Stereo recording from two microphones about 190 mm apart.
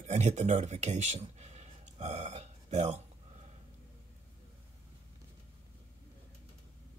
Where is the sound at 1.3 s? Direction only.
35° right (ahead or behind).